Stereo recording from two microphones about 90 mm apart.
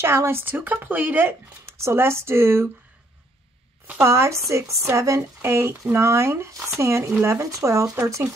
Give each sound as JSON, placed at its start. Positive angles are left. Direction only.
{"t": 0.0, "sound": "speech", "side_deg": -30}
{"t": 1.7, "sound": "speech", "side_deg": -30}
{"t": 4.0, "sound": "speech", "side_deg": -30}